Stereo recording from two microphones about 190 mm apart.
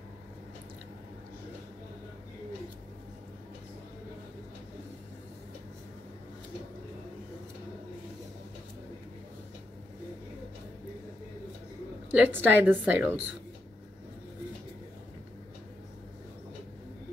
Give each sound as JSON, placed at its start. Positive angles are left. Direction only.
{"t": 12.1, "sound": "a woman's voice", "side_deg": -10}